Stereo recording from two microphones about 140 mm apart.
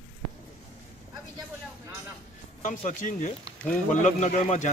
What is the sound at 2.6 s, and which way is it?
Speech, 60° left (ahead or behind).